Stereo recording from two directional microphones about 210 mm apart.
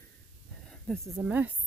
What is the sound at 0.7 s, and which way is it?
Speech, centre (ahead or behind).